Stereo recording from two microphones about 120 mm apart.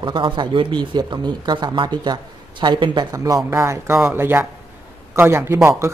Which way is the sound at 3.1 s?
30° right (ahead or behind).